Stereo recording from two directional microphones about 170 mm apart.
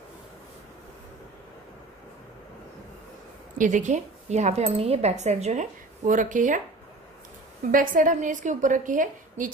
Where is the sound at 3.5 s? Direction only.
50° right (ahead or behind).